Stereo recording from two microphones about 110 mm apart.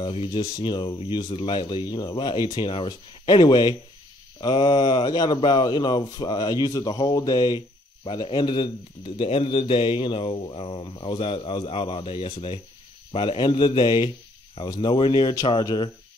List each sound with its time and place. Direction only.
0.0 s speech: 50° left (ahead or behind)